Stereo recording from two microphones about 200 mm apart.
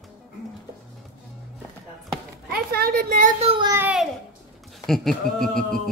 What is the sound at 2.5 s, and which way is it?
Speech, 50° right (ahead or behind).